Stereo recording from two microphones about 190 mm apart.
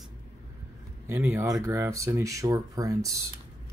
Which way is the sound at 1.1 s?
10° right (ahead or behind).